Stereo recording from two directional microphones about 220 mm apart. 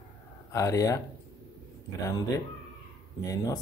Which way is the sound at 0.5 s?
15° left (ahead or behind).